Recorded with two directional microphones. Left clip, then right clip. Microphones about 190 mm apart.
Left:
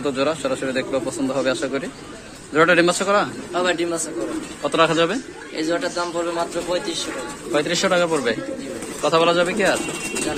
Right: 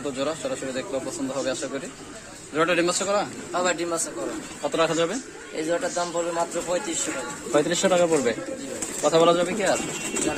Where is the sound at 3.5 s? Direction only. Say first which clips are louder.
Left 1 dB; 30° right (ahead or behind).